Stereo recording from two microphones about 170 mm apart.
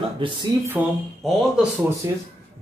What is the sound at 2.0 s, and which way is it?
Speech, 15° right (ahead or behind).